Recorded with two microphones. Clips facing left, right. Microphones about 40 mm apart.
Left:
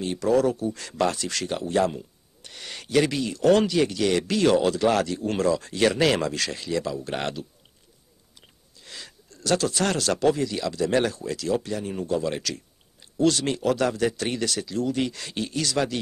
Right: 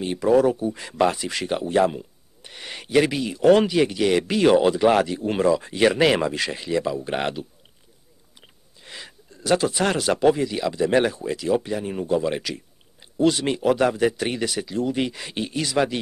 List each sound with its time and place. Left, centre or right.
0.0 s speech: centre